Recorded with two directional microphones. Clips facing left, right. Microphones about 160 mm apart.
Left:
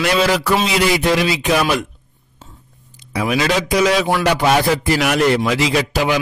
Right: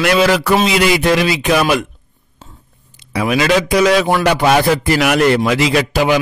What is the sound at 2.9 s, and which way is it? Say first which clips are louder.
A man's voice: right 3 dB; 70° right (ahead or behind).